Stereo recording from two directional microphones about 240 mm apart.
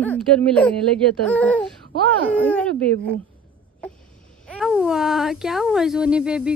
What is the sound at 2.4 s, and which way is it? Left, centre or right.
Speech, centre.